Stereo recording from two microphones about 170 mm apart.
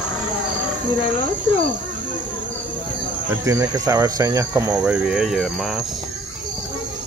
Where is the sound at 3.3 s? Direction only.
15° right (ahead or behind).